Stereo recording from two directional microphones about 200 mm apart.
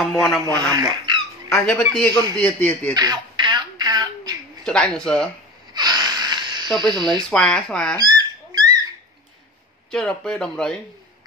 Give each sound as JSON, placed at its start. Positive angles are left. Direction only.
{"t": 0.2, "sound": "speech", "side_deg": 0}
{"t": 0.6, "sound": "speech", "side_deg": -20}
{"t": 1.5, "sound": "speech", "side_deg": 5}
{"t": 2.9, "sound": "a sound", "side_deg": -20}
{"t": 4.6, "sound": "speech", "side_deg": 5}
{"t": 5.7, "sound": "wheeze", "side_deg": -20}
{"t": 6.8, "sound": "speech", "side_deg": -20}
{"t": 7.2, "sound": "speech", "side_deg": 5}
{"t": 8.0, "sound": "rodents", "side_deg": -20}
{"t": 9.8, "sound": "speech", "side_deg": 5}